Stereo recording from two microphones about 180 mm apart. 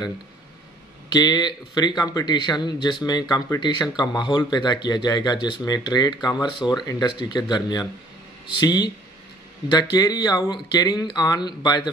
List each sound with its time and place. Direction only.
1.1 s speech: 25° left (ahead or behind)
9.9 s speech: 20° left (ahead or behind)